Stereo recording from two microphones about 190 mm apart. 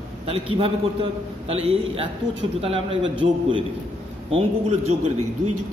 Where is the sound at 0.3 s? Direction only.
30° right (ahead or behind).